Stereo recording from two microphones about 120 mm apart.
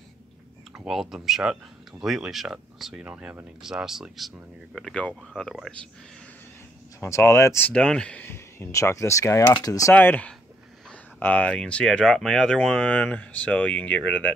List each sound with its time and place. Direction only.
0.7 s speech: 5° right (ahead or behind)
7.0 s speech: 25° left (ahead or behind)
9.9 s speech: 15° left (ahead or behind)